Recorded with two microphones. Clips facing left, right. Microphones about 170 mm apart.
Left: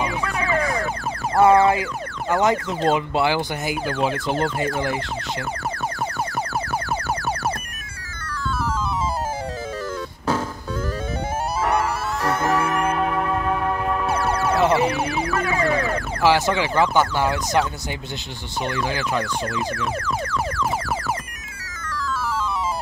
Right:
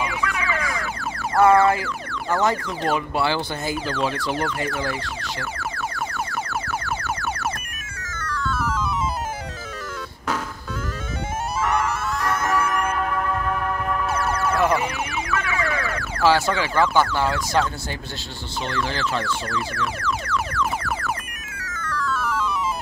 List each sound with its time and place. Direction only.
0.0 s music: 30° left (ahead or behind)
1.3 s speech: 15° left (ahead or behind)
5.6 s a sound: 40° left (ahead or behind)
11.6 s music: 30° left (ahead or behind)
16.2 s speech: 20° left (ahead or behind)
18.7 s speech: 15° left (ahead or behind)